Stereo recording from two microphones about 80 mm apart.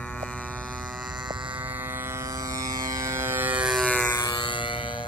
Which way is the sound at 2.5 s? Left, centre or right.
Right.